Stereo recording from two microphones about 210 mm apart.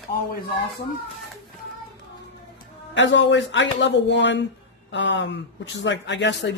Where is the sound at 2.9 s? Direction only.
60° left (ahead or behind).